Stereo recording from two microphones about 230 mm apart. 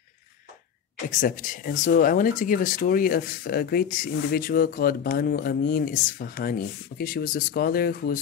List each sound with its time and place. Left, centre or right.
1.2 s speech: left